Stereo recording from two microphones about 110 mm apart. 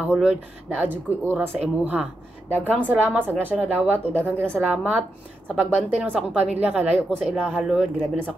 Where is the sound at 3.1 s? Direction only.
15° right (ahead or behind).